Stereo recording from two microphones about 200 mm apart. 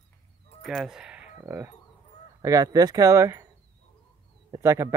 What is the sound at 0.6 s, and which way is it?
Speech, centre (ahead or behind).